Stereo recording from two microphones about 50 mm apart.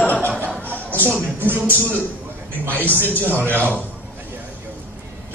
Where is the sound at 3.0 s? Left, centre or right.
Left.